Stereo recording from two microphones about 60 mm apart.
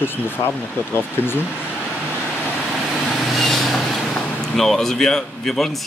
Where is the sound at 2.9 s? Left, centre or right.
Centre.